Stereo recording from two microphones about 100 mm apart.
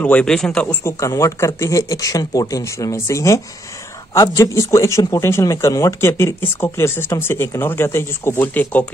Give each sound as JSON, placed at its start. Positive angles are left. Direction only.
{"t": 0.0, "sound": "a man's voice", "side_deg": 10}
{"t": 0.8, "sound": "speech", "side_deg": 30}